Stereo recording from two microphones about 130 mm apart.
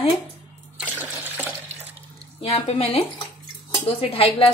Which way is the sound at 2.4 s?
50° left (ahead or behind).